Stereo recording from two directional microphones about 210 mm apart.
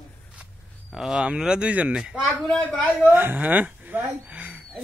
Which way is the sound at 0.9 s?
5° right (ahead or behind).